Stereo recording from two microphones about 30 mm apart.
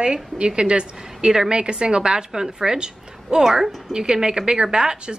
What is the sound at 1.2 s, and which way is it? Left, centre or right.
Speech, right.